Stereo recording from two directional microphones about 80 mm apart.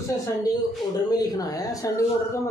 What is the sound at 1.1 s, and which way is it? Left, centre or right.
Speech, left.